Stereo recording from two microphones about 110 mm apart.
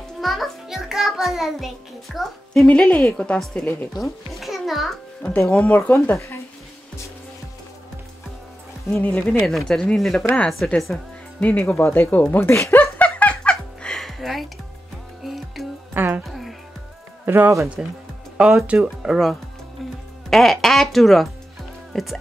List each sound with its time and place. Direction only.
0.2 s music: centre (ahead or behind)
2.1 s a woman's voice: 5° left (ahead or behind)
5.6 s a woman's voice: 15° left (ahead or behind)
8.9 s a woman's voice: 10° left (ahead or behind)
11.7 s giggle: 25° left (ahead or behind); by 14.5 s centre (ahead or behind)
15.2 s music: centre (ahead or behind)
15.9 s speech: 20° right (ahead or behind)
16.3 s music: centre (ahead or behind)
17.3 s speech: 25° right (ahead or behind)
18.4 s speech: 10° right (ahead or behind)